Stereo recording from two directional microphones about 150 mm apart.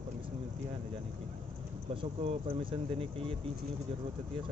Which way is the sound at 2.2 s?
35° right (ahead or behind).